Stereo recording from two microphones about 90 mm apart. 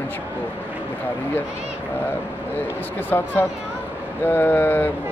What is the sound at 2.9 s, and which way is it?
Speech, 25° left (ahead or behind).